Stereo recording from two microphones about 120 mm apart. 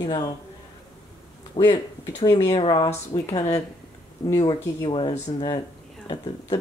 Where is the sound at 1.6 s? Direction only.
50° left (ahead or behind).